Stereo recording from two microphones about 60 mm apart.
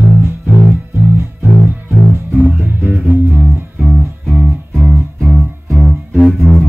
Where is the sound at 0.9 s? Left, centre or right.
Right.